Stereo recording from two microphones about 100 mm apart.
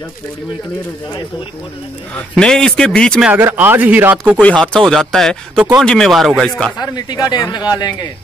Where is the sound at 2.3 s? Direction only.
5° left (ahead or behind).